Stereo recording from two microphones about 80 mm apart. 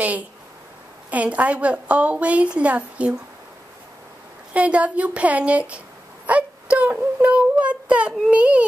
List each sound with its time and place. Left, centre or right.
1.1 s a woman's voice: centre
4.6 s a woman's voice: centre
6.2 s child singing: centre